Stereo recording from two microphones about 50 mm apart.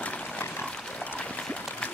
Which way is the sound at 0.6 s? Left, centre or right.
Centre.